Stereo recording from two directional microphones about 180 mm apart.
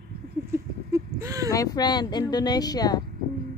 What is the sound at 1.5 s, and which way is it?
Speech, 20° left (ahead or behind).